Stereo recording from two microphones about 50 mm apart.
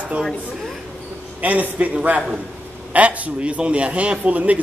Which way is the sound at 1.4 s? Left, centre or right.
Right.